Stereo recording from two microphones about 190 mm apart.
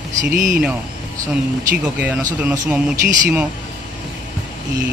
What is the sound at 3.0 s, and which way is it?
Speech, 45° right (ahead or behind).